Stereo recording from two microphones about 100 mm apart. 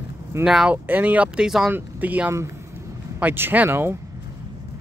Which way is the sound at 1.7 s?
15° right (ahead or behind).